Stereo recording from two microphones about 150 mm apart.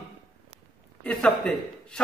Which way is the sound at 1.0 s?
5° left (ahead or behind).